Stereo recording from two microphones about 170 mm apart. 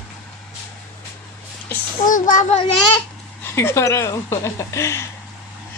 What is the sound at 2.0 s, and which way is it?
Speech, 50° left (ahead or behind).